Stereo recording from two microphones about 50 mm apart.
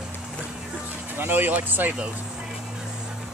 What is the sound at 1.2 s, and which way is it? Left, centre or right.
Speech, right.